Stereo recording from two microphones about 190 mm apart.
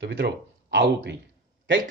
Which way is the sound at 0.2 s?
70° right (ahead or behind).